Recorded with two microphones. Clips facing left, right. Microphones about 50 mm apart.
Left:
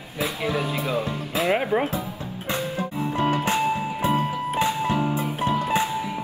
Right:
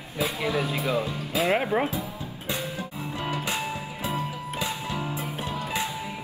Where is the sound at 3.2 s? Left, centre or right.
Left.